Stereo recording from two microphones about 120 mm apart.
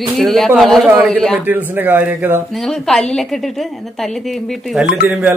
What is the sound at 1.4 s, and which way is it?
Speech, 15° right (ahead or behind).